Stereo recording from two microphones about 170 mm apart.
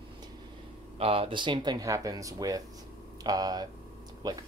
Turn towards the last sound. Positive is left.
turn(degrees=-20)  # may be behind; listen again after turning